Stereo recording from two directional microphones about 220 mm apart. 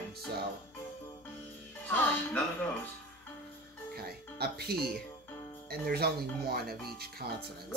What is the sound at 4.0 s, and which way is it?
Music, 45° right (ahead or behind).